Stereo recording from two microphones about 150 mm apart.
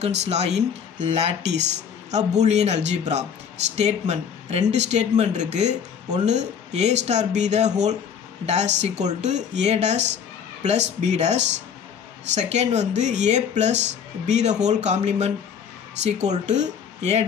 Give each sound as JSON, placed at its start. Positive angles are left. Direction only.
{"t": 0.0, "sound": "speech", "side_deg": -45}